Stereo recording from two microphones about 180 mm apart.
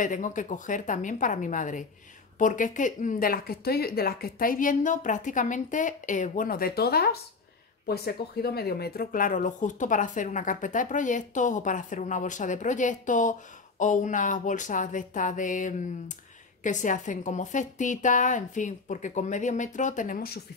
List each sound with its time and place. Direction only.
0.0 s speech: 45° left (ahead or behind)